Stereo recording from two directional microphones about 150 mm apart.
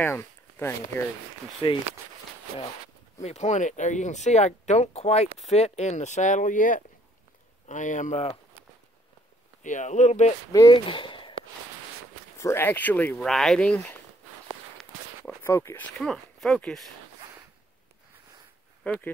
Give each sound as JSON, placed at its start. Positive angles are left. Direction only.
{"t": 0.0, "sound": "speech", "side_deg": 15}
{"t": 1.6, "sound": "speech", "side_deg": 30}
{"t": 3.2, "sound": "speech", "side_deg": 50}
{"t": 9.6, "sound": "speech", "side_deg": 55}
{"t": 10.5, "sound": "speech", "side_deg": 25}
{"t": 10.9, "sound": "a sound", "side_deg": 35}
{"t": 12.4, "sound": "speech", "side_deg": 15}
{"t": 15.4, "sound": "speech", "side_deg": 15}
{"t": 16.0, "sound": "speech", "side_deg": 0}
{"t": 18.9, "sound": "speech", "side_deg": 10}